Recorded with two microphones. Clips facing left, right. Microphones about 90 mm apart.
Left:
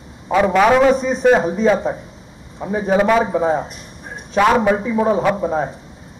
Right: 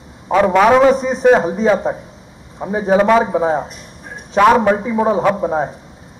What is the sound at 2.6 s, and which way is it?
Speech, 20° right (ahead or behind).